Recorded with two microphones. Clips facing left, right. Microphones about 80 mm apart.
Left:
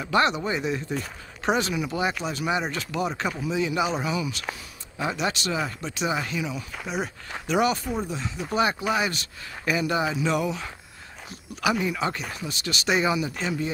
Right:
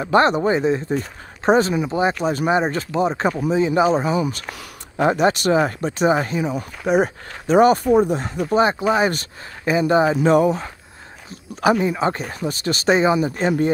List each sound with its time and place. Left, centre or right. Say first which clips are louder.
0.0 s speech: right 7 dB; right
4.6 s speech: right 10 dB; right
7.8 s speech: right 13 dB; right
8.5 s speech: right 7 dB; right